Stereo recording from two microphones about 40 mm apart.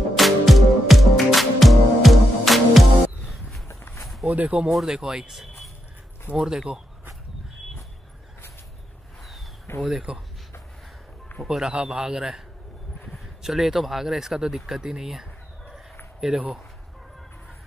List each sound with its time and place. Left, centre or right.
0.1 s music: centre
4.3 s speech: right
4.6 s speech: centre
4.9 s a man's voice: centre
6.3 s speech: centre
9.7 s speech: left
10.1 s a man's voice: right
11.4 s a man's voice: centre
13.4 s speech: centre